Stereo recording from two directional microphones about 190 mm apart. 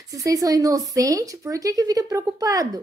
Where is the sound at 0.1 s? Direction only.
20° right (ahead or behind).